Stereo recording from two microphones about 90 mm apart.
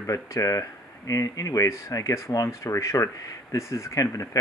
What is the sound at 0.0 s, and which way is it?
Speech, 35° left (ahead or behind).